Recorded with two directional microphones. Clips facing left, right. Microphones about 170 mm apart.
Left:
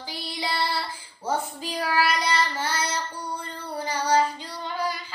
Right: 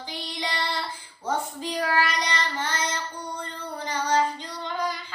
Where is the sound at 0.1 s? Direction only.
5° left (ahead or behind).